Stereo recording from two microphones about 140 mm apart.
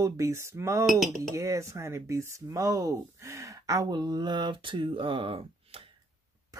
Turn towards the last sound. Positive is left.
turn(degrees=-40)  # may be behind; listen again after turning